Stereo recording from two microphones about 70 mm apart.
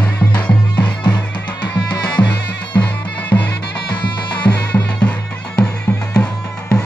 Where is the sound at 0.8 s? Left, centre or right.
Left.